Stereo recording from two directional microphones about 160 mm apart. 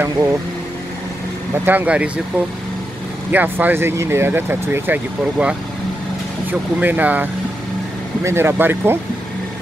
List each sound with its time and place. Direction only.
0.0 s speech: 15° right (ahead or behind)
1.7 s speech: 10° right (ahead or behind)
6.8 s speech: 10° right (ahead or behind)